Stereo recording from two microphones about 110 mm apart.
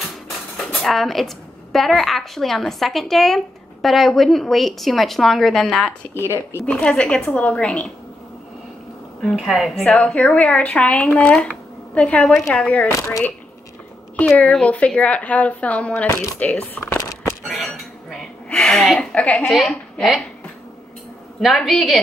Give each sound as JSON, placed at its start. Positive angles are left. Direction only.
{"t": 0.8, "sound": "a woman's voice", "side_deg": 0}
{"t": 6.1, "sound": "speech", "side_deg": 25}
{"t": 6.6, "sound": "a woman's voice", "side_deg": 10}
{"t": 9.2, "sound": "a woman's voice", "side_deg": -5}
{"t": 9.8, "sound": "a woman's voice", "side_deg": 10}
{"t": 14.1, "sound": "a woman's voice", "side_deg": 10}
{"t": 17.1, "sound": "a sound", "side_deg": 30}
{"t": 17.5, "sound": "dishes", "side_deg": 0}
{"t": 18.5, "sound": "a woman's voice", "side_deg": 5}
{"t": 19.5, "sound": "a woman's voice", "side_deg": 0}
{"t": 21.4, "sound": "a woman's voice", "side_deg": 0}